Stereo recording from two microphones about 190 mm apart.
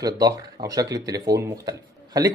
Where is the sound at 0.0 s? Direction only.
20° right (ahead or behind).